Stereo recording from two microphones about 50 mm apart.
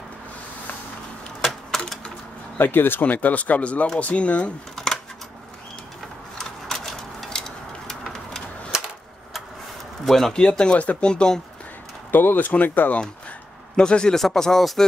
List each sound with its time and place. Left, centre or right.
1.7 s typewriter: centre
2.5 s speech: left
4.7 s a sound: centre
6.3 s a sound: centre
10.0 s speech: centre
10.3 s speech: centre
11.1 s speech: centre
12.1 s speech: left
13.7 s speech: centre